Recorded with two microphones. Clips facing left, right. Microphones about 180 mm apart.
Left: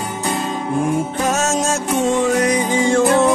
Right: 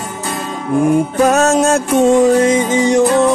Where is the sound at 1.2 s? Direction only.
60° right (ahead or behind).